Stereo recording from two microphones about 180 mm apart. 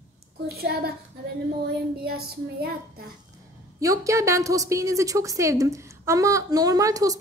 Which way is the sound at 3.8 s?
15° right (ahead or behind).